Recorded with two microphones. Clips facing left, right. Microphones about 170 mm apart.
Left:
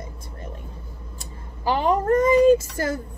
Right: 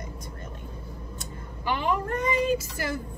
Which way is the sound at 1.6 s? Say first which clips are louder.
Left 7 dB; 40° left (ahead or behind).